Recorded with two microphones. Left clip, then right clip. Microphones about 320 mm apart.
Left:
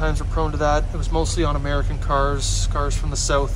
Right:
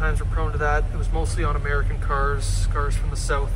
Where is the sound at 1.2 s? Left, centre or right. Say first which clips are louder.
Left 2 dB; centre.